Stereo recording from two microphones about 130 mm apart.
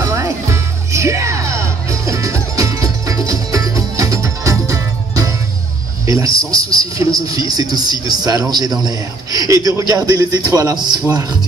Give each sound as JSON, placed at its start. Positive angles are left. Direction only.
{"t": 0.0, "sound": "music", "side_deg": -25}
{"t": 6.0, "sound": "a man's voice", "side_deg": -25}